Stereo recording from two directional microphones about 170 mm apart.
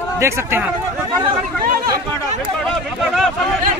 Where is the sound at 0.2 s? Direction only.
15° right (ahead or behind).